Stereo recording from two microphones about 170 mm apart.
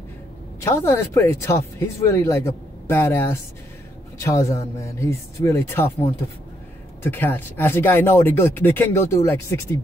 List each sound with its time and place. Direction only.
0.6 s speech: 15° left (ahead or behind)